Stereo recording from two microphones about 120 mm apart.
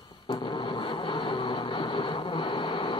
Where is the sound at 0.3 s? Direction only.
45° left (ahead or behind).